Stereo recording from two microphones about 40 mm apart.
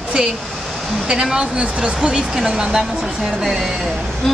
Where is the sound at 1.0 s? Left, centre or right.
Centre.